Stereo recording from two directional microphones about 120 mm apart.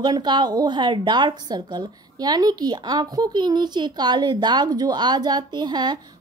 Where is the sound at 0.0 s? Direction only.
35° right (ahead or behind).